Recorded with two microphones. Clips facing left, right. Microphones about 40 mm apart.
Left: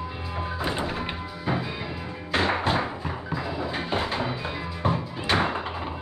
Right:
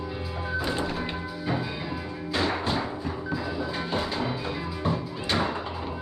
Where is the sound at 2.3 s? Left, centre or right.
Left.